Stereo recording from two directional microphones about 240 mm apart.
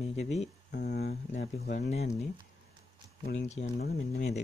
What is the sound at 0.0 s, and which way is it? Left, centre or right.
Speech, left.